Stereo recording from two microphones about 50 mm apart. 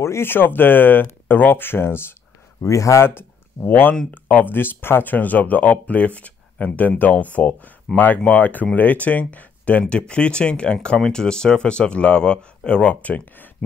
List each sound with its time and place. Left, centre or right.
0.0 s speech: left
0.3 s speech: left
2.6 s speech: left
3.2 s speech: left